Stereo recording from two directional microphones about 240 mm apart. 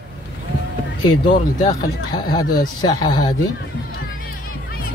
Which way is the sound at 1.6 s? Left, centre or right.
Centre.